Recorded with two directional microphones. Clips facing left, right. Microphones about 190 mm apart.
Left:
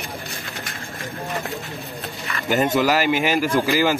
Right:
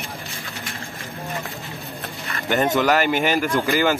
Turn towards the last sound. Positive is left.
turn(degrees=0)  # may be behind; listen again after turning